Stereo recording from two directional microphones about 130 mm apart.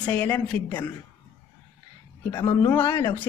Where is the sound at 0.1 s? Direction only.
10° left (ahead or behind).